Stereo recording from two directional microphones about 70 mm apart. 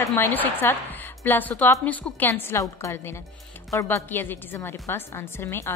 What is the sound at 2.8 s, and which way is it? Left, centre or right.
Speech, left.